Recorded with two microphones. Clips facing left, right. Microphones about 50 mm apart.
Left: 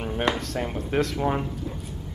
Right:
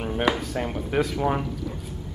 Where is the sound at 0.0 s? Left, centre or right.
Centre.